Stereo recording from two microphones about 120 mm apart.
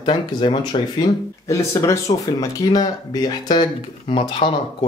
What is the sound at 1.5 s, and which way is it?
Speech, 25° left (ahead or behind).